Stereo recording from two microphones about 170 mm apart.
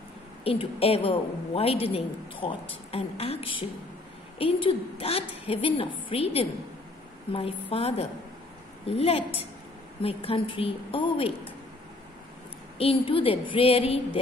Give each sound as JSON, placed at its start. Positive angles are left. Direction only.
{"t": 0.4, "sound": "a woman's voice", "side_deg": 35}
{"t": 12.7, "sound": "a woman's voice", "side_deg": 35}